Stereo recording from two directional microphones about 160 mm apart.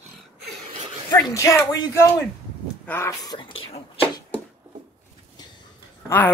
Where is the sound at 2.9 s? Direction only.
20° left (ahead or behind).